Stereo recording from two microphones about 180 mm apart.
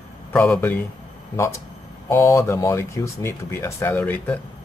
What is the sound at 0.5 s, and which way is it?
Speech, 10° left (ahead or behind).